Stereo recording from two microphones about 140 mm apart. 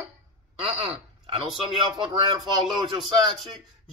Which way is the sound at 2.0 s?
35° right (ahead or behind).